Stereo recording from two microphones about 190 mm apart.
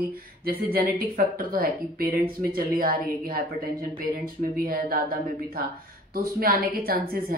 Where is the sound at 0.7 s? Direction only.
50° right (ahead or behind).